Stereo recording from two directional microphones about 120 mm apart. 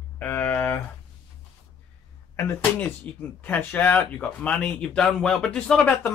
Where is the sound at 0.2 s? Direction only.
15° left (ahead or behind).